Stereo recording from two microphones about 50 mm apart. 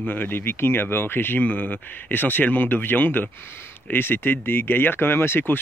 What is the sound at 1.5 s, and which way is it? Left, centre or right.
Speech, left.